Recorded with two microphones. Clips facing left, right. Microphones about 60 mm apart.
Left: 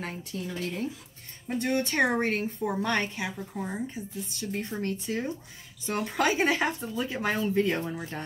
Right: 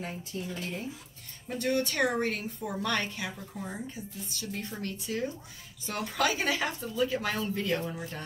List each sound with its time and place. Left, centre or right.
0.3 s a woman's voice: left
1.6 s a woman's voice: left